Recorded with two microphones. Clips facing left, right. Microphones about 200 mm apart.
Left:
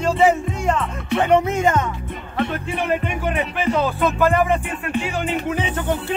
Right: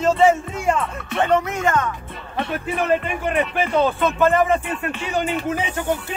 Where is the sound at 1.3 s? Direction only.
20° left (ahead or behind).